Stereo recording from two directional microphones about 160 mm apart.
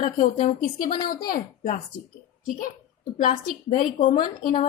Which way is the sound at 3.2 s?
50° left (ahead or behind).